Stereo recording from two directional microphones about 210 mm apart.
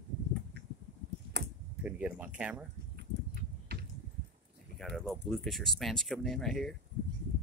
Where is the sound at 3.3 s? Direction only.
50° right (ahead or behind).